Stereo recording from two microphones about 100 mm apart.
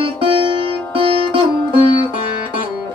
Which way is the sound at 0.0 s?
55° right (ahead or behind).